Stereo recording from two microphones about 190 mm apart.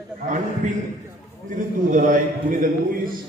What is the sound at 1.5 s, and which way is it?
A man's voice, 45° right (ahead or behind).